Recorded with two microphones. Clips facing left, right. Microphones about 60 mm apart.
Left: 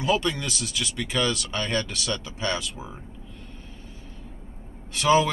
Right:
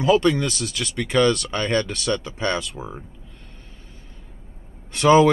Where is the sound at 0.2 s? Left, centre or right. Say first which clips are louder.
Right 8 dB; right.